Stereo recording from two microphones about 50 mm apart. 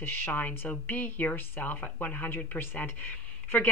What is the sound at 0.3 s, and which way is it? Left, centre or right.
Speech, left.